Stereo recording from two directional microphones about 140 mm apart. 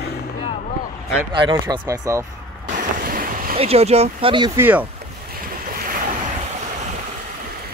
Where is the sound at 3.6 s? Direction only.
45° right (ahead or behind).